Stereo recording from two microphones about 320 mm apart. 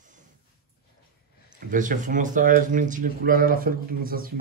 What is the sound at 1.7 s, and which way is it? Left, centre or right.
Speech, right.